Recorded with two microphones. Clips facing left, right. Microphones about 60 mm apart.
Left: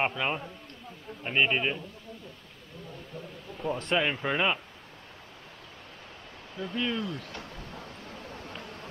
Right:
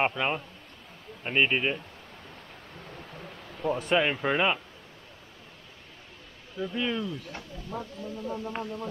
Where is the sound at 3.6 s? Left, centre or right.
Centre.